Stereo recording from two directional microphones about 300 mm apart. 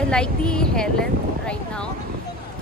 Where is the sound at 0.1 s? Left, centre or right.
Centre.